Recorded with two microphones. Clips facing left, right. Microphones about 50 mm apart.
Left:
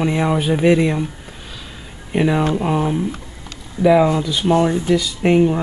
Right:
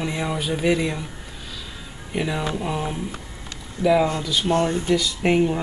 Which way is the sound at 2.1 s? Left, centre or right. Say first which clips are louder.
Left 8 dB; left.